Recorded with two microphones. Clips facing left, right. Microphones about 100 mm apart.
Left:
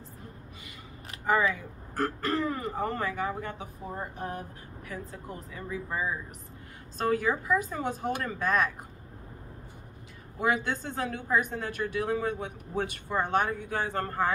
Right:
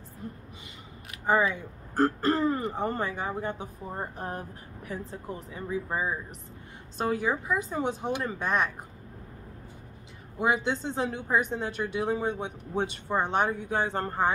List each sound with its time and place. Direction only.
1.2 s a woman's voice: 25° right (ahead or behind)
10.4 s a woman's voice: 20° right (ahead or behind)